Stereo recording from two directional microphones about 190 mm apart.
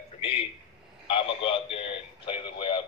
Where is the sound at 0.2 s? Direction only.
30° left (ahead or behind).